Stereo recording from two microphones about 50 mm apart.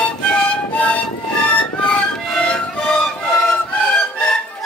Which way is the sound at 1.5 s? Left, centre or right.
Left.